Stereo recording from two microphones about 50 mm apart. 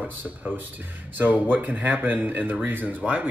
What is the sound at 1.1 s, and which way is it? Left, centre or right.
Speech, right.